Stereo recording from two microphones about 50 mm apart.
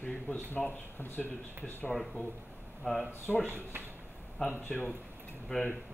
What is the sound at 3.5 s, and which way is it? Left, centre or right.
Speech, right.